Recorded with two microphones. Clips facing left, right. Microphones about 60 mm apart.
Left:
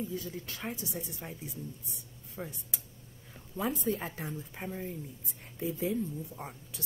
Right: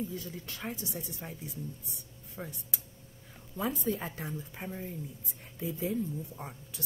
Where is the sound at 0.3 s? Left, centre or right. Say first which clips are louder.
Left 1 dB; centre.